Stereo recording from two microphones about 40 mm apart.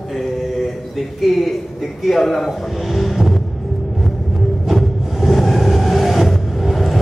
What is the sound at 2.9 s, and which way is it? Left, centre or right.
Music, centre.